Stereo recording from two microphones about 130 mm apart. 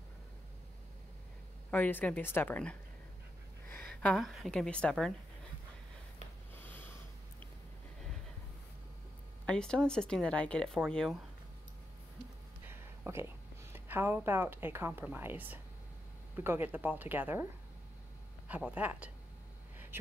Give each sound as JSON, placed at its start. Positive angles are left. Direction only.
{"t": 1.7, "sound": "a woman's voice", "side_deg": 15}
{"t": 6.5, "sound": "snort", "side_deg": 15}
{"t": 9.5, "sound": "speech", "side_deg": 5}
{"t": 12.6, "sound": "a woman's voice", "side_deg": -20}
{"t": 18.5, "sound": "speech", "side_deg": -10}